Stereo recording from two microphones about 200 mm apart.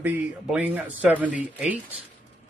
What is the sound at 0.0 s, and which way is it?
A man's voice, 10° right (ahead or behind).